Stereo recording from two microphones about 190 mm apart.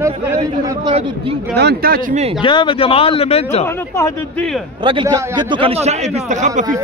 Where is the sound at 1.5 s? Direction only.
55° right (ahead or behind).